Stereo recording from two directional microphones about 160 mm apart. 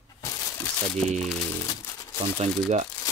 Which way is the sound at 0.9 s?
Centre (ahead or behind).